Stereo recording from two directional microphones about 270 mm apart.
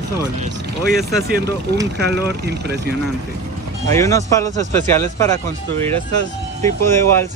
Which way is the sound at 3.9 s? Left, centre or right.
Centre.